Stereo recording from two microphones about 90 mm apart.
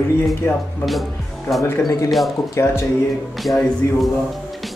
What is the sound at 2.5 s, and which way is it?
Speech, 30° left (ahead or behind).